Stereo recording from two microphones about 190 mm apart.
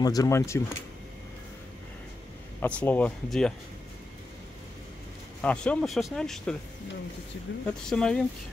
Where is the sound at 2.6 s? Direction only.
10° left (ahead or behind).